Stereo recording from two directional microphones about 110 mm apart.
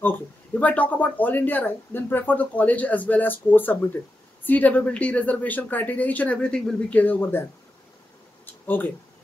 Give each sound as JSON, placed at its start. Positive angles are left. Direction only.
{"t": 0.0, "sound": "speech", "side_deg": 15}
{"t": 8.6, "sound": "speech", "side_deg": 15}